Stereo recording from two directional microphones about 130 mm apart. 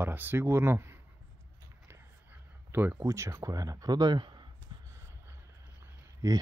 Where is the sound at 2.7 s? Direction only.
15° right (ahead or behind); by 4.4 s 35° right (ahead or behind).